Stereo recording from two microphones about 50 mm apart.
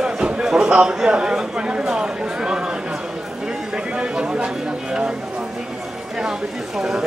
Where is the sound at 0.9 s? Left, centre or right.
Centre.